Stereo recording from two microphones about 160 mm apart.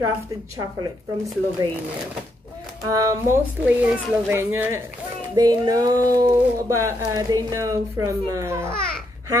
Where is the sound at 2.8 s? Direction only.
20° right (ahead or behind).